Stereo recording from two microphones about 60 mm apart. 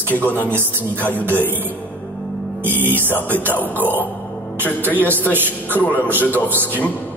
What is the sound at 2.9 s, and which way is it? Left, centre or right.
Speech, right.